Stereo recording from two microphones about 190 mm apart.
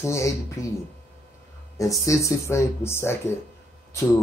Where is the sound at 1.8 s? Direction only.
15° left (ahead or behind).